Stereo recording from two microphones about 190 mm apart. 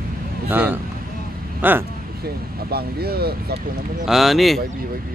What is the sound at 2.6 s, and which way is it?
Speech, 55° right (ahead or behind).